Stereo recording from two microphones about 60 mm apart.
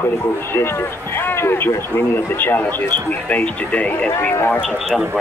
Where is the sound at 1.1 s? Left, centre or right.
Left.